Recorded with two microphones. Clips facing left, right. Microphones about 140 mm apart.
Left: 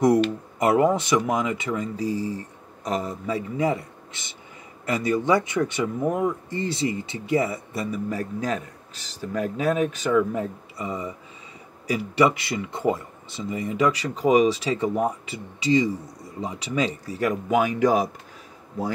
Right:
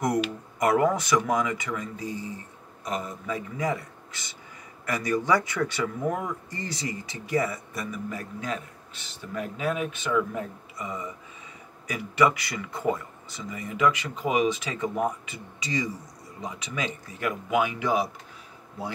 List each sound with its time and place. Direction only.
0.6 s speech: 25° left (ahead or behind); by 18.1 s 40° left (ahead or behind)